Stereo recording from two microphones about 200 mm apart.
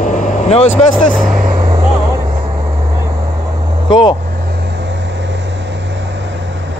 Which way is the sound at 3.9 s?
20° left (ahead or behind).